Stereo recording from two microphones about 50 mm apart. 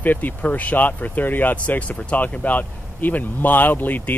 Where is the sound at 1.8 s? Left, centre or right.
Left.